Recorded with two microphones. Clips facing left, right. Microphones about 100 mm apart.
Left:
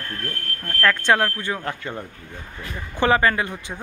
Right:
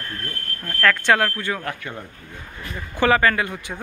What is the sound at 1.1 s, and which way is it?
Speech, 20° left (ahead or behind).